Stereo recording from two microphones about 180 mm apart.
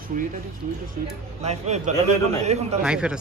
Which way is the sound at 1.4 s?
40° right (ahead or behind).